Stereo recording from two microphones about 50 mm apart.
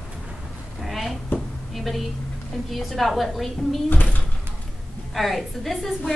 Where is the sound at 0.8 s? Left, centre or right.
Centre.